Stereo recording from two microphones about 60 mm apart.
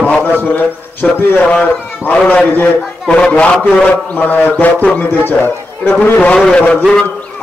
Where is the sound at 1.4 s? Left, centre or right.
Left.